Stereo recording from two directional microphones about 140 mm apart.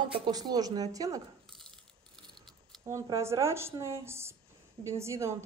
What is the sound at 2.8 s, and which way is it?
A woman's voice, 20° right (ahead or behind).